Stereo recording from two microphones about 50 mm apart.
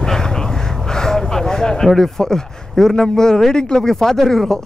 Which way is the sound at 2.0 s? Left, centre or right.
Centre.